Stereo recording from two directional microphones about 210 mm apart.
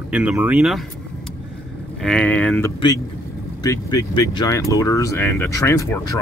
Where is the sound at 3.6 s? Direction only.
15° left (ahead or behind).